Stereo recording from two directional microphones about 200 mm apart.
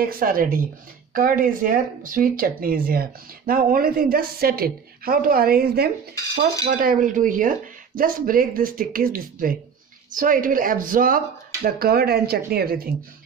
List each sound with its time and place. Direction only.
0.0 s speech: 45° right (ahead or behind)